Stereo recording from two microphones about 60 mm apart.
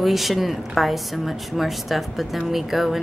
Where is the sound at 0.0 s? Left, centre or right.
Centre.